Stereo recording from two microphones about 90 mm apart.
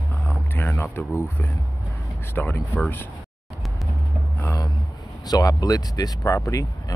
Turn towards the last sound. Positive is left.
turn(degrees=35)  # may be behind; listen again after turning